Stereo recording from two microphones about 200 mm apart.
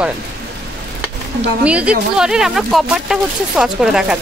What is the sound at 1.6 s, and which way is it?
A woman's voice, 5° right (ahead or behind).